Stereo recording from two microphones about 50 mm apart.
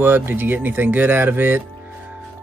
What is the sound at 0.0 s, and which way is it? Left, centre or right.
Speech, right.